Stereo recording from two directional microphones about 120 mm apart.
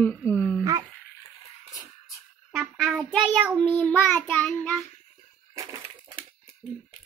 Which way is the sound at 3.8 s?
10° left (ahead or behind).